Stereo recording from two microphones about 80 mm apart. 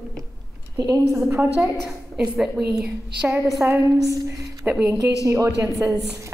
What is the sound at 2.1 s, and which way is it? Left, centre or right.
Speech, centre.